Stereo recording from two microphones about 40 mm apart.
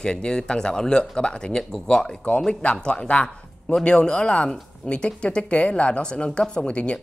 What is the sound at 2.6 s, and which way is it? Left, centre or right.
Speech, left.